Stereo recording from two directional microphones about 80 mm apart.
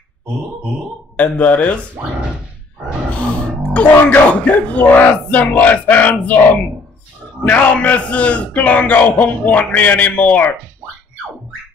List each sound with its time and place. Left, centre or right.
1.1 s a man's voice: centre
3.7 s speech: centre